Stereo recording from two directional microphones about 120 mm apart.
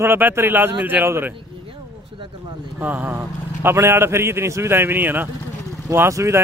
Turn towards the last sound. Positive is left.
turn(degrees=-25)  # may be behind; listen again after turning